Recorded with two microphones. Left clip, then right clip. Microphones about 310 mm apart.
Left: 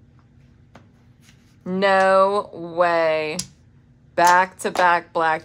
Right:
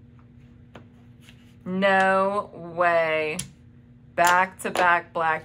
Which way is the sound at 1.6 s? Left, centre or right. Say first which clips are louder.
Left 3 dB; left.